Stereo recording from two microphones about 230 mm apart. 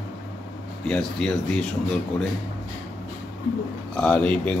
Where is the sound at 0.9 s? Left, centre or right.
Centre.